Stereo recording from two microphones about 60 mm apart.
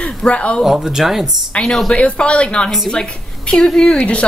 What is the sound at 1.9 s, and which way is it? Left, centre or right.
A woman's voice, centre.